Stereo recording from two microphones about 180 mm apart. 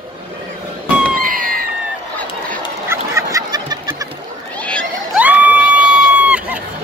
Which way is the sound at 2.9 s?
20° right (ahead or behind).